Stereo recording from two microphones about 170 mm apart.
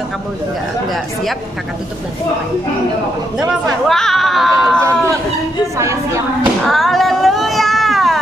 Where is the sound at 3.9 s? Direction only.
Centre (ahead or behind).